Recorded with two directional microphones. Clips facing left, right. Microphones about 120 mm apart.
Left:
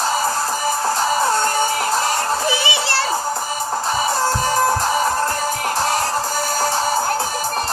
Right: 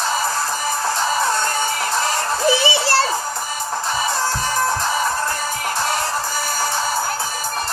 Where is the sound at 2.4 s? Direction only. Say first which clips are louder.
Right 3 dB; 30° right (ahead or behind).